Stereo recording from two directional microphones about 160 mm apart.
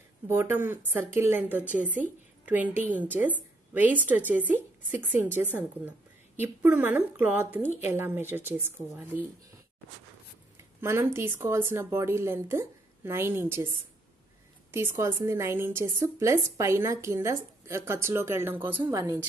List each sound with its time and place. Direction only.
0.3 s a woman's voice: 15° right (ahead or behind)
10.8 s a woman's voice: 15° right (ahead or behind)
14.7 s a woman's voice: 15° right (ahead or behind)